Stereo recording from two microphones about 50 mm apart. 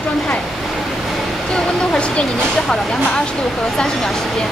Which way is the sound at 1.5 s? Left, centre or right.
Centre.